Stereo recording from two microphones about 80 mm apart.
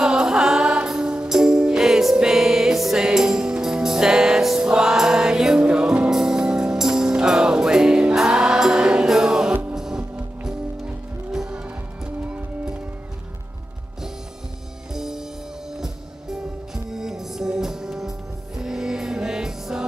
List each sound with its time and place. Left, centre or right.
0.0 s music: centre
9.8 s music: centre
11.3 s music: centre
14.9 s music: centre